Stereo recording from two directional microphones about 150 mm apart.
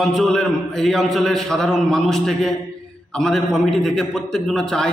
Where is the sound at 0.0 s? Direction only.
Centre (ahead or behind).